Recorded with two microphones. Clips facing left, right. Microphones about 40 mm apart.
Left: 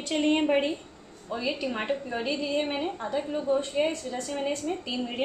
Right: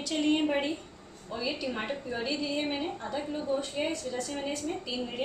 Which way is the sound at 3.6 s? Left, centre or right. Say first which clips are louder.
Left 5 dB; left.